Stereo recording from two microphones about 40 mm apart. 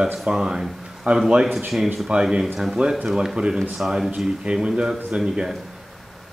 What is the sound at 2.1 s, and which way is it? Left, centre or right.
Speech, right.